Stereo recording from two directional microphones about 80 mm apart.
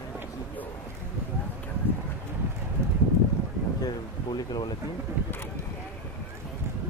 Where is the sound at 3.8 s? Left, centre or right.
Left.